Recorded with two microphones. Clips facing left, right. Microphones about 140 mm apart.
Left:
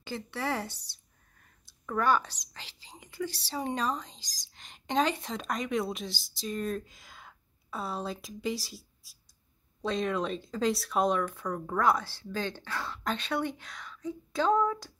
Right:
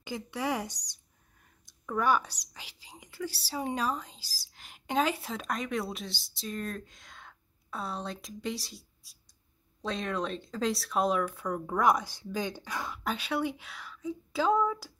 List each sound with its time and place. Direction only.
0.0 s speech: 15° right (ahead or behind)